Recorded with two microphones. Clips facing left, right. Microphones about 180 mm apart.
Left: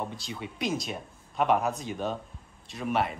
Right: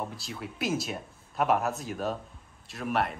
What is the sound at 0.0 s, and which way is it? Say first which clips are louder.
Speech: left 1 dB; centre (ahead or behind).